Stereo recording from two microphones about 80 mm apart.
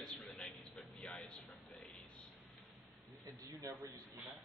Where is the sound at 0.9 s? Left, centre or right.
Centre.